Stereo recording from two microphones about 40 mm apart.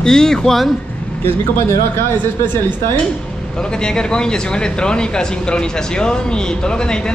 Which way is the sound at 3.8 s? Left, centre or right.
Left.